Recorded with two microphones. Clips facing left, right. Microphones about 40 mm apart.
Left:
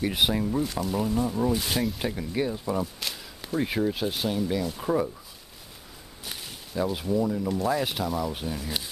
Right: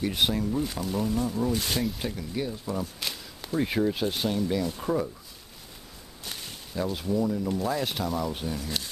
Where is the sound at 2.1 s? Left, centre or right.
Centre.